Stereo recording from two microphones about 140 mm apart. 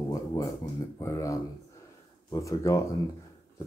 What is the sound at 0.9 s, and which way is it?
Speech, 25° left (ahead or behind).